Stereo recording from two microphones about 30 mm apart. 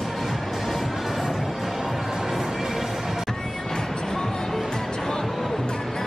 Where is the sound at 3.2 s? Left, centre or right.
Left.